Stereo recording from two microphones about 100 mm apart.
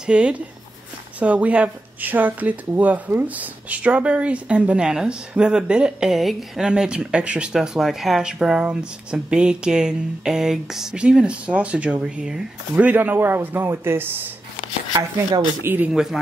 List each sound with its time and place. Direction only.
0.0 s speech: 10° right (ahead or behind)
15.6 s speech: 20° right (ahead or behind)
15.9 s a man's voice: 5° right (ahead or behind)